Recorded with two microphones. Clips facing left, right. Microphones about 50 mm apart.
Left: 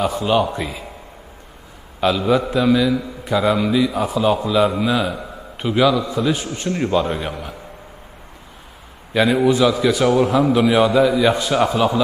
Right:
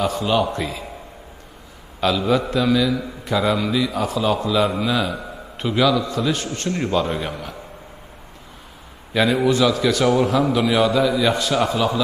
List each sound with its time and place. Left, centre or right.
0.5 s a man's voice: centre
2.0 s a man's voice: centre
9.1 s a man's voice: centre
10.7 s a man's voice: left